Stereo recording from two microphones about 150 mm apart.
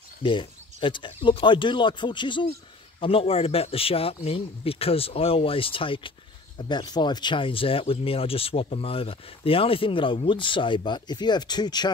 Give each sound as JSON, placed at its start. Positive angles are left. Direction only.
{"t": 0.2, "sound": "speech", "side_deg": 35}